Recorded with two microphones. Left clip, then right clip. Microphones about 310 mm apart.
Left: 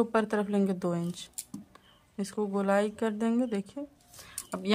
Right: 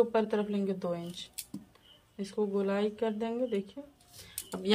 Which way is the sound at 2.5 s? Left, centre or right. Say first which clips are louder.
Left 7 dB; centre.